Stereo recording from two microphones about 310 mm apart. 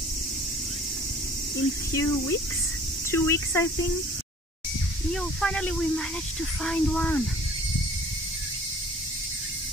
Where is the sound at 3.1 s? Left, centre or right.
Centre.